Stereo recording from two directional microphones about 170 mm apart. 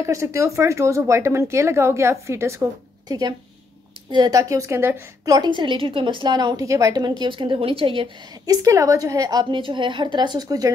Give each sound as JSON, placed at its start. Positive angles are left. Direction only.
{"t": 0.0, "sound": "a woman's voice", "side_deg": -15}
{"t": 8.6, "sound": "a woman's voice", "side_deg": -20}